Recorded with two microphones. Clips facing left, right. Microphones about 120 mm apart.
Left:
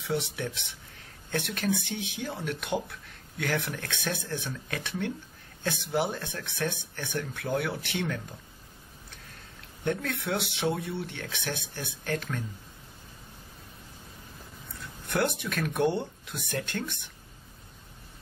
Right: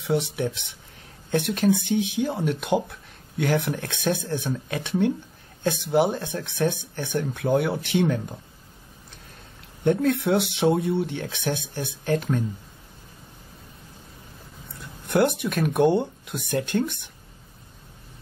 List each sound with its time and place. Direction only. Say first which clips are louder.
0.0 s speech: right 7 dB; 20° right (ahead or behind)
9.8 s speech: right 10 dB; 25° right (ahead or behind)
15.1 s speech: right 7 dB; 20° right (ahead or behind)